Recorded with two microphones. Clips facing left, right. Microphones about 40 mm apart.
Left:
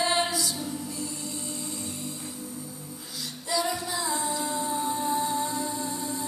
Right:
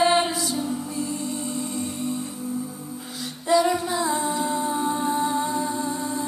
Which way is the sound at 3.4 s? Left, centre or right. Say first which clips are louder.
Right 9 dB; right.